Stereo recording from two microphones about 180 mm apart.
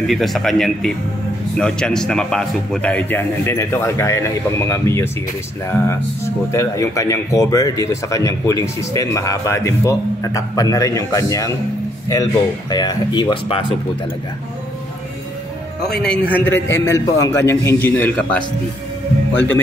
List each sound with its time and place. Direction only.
0.0 s speech: centre (ahead or behind); by 13.7 s 30° left (ahead or behind)
15.9 s speech: 5° left (ahead or behind)